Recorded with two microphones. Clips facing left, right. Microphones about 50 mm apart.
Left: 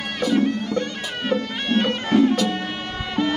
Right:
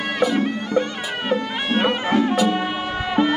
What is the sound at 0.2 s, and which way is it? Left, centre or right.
Bagpipes, centre.